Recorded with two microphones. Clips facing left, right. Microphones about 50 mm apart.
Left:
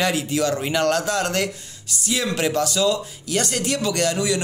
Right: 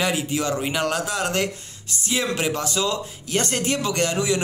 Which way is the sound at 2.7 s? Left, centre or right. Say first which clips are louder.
Left 4 dB; right.